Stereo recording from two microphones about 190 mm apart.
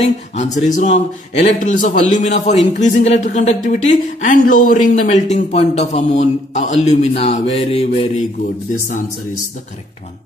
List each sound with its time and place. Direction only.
0.0 s a man's voice: 35° left (ahead or behind)